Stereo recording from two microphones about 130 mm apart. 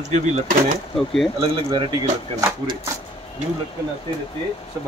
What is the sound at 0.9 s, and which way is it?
Speech, centre (ahead or behind).